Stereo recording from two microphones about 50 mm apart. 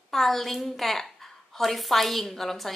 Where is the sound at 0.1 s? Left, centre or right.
Centre.